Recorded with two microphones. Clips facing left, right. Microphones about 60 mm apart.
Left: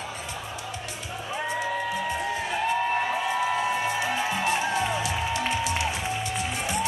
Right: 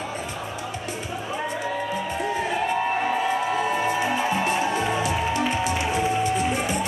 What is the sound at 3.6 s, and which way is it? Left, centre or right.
Music, centre.